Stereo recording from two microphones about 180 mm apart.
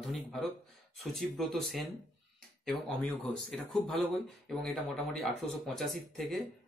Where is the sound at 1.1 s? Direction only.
Centre (ahead or behind).